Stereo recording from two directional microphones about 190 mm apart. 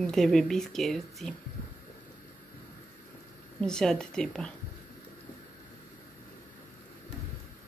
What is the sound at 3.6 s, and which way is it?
Speech, 5° left (ahead or behind).